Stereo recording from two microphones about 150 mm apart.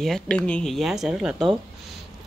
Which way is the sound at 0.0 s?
5° left (ahead or behind).